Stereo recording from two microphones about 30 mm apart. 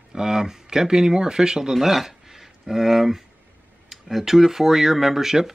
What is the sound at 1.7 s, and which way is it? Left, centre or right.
Speech, centre.